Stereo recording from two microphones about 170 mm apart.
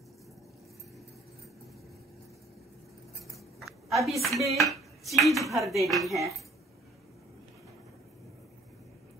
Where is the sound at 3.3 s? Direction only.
Centre (ahead or behind).